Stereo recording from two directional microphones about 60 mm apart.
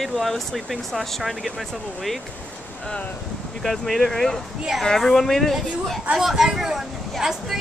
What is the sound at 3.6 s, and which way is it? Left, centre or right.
Speech, centre.